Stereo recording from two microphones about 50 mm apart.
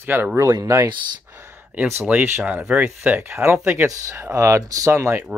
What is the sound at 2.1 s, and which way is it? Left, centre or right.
Speech, right.